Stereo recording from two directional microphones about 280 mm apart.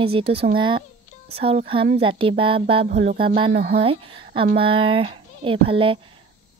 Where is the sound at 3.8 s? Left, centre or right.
Centre.